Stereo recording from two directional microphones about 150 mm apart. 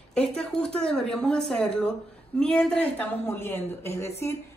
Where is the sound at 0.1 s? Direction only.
5° left (ahead or behind).